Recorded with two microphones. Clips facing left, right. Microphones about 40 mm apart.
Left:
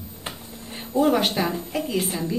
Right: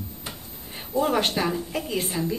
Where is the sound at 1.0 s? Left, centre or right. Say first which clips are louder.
Left 3 dB; centre.